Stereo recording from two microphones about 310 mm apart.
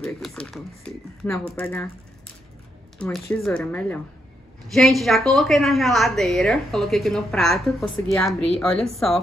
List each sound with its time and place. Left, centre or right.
0.0 s a woman's voice: centre
3.0 s a woman's voice: centre